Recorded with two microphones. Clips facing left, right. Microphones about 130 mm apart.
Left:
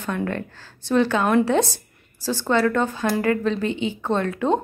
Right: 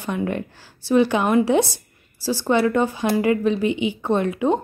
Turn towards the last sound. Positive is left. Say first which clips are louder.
# right 2 dB
turn(degrees=-15)  # may be behind; listen again after turning